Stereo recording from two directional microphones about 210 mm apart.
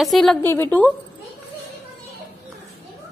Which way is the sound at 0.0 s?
Centre (ahead or behind).